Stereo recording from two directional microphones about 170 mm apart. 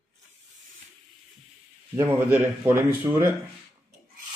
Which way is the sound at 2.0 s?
15° right (ahead or behind).